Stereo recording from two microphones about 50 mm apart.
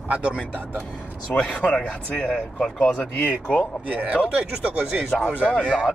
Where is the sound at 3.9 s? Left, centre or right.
Right.